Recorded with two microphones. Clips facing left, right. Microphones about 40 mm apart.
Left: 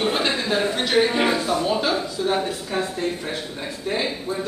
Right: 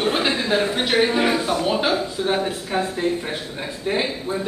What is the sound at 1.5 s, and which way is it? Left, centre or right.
Speech, right.